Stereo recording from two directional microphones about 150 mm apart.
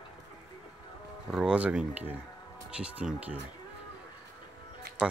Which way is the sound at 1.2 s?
5° right (ahead or behind).